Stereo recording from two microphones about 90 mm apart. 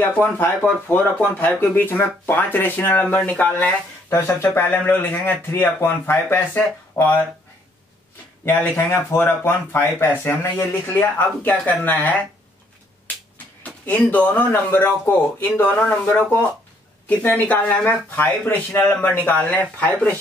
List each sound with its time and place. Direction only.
0.1 s speech: 20° left (ahead or behind)
3.4 s speech: 20° left (ahead or behind)
8.5 s speech: 20° left (ahead or behind)
13.6 s speech: 15° left (ahead or behind)
15.7 s speech: 15° left (ahead or behind)